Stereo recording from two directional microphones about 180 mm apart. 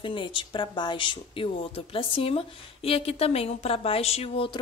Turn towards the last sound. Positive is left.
turn(degrees=30)  # may be behind; listen again after turning